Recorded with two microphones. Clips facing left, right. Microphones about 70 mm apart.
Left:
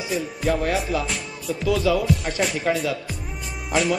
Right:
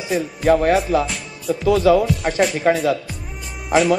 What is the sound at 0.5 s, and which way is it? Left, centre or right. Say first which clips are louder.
Music: right 8 dB; right.